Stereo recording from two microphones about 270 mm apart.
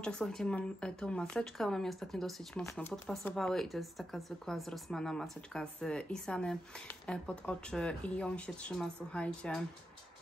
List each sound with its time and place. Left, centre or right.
0.0 s speech: centre